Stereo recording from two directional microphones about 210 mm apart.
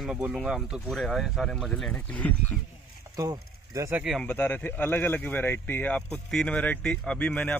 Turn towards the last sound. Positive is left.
turn(degrees=5)  # may be behind; listen again after turning